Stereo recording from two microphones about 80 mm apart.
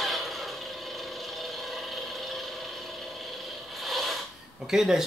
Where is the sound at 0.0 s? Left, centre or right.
Centre.